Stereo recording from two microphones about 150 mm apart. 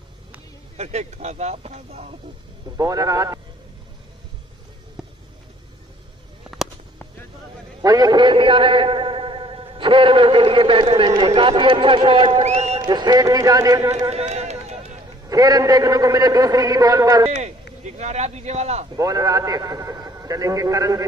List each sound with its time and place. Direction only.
0.7 s speech: 45° right (ahead or behind)
2.8 s a man's voice: 25° right (ahead or behind)
5.0 s a sound: 5° right (ahead or behind)
7.8 s a man's voice: 25° right (ahead or behind)
12.4 s a sound: 45° right (ahead or behind)
12.8 s a man's voice: 30° right (ahead or behind)
14.0 s run: 45° right (ahead or behind)
15.2 s a man's voice: 25° right (ahead or behind)
17.8 s speech: 50° right (ahead or behind)
18.9 s a man's voice: 25° right (ahead or behind)